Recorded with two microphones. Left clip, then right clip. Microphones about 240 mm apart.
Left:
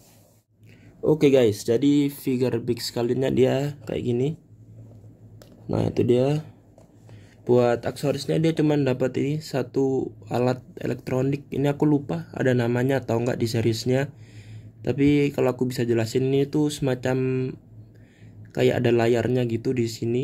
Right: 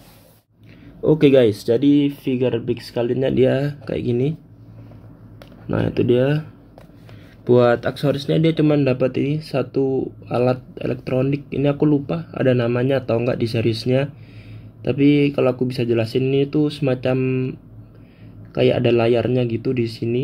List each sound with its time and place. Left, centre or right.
1.0 s speech: centre
2.2 s speech: left
3.1 s speech: centre
5.7 s speech: centre
7.4 s speech: centre